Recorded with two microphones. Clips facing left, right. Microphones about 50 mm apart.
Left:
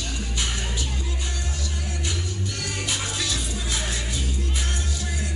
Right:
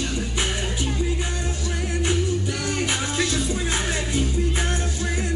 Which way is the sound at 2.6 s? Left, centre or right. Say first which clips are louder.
Right 5 dB; right.